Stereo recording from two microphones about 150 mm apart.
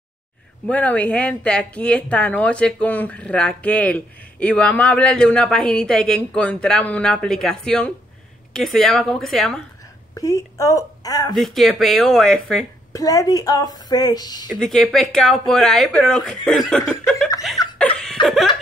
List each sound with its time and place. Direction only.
0.7 s speech: 10° left (ahead or behind)
10.1 s a woman's voice: 25° left (ahead or behind)
11.3 s speech: centre (ahead or behind)
12.9 s a woman's voice: 25° left (ahead or behind)
14.5 s speech: centre (ahead or behind)
17.7 s chuckle: 5° left (ahead or behind)
18.2 s laughter: centre (ahead or behind)